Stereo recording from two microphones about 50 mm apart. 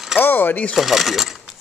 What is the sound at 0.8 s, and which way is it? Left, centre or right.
Speech, centre.